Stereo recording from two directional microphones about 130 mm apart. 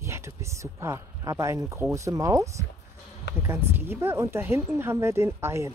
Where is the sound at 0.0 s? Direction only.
20° right (ahead or behind).